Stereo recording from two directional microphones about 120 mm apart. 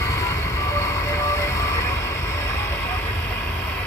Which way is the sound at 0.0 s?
25° left (ahead or behind).